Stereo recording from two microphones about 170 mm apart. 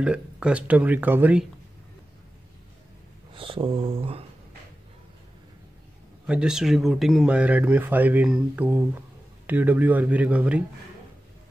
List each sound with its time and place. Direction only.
0.0 s speech: 5° right (ahead or behind)
3.3 s speech: 30° right (ahead or behind)
6.2 s speech: 5° right (ahead or behind)